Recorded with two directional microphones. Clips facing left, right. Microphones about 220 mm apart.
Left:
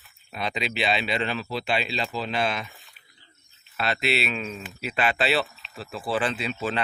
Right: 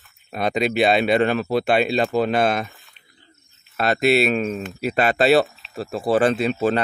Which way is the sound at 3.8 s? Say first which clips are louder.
Right 9 dB; 45° right (ahead or behind).